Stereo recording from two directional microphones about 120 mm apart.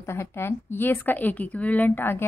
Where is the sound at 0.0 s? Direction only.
20° left (ahead or behind).